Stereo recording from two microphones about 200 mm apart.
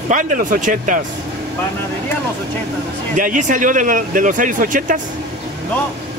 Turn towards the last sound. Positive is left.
turn(degrees=-40)  # may be behind; listen again after turning